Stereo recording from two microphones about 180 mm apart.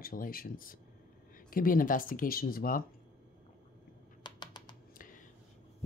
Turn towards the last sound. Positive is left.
turn(degrees=25)  # may be behind; listen again after turning